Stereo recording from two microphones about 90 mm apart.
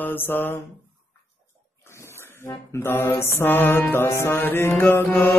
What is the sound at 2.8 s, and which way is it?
Mantra, 25° left (ahead or behind).